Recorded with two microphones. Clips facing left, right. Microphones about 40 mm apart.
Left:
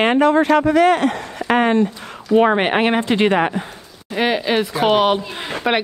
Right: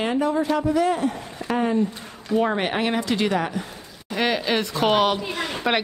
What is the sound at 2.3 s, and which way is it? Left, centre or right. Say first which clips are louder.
Speech: left 7 dB; left.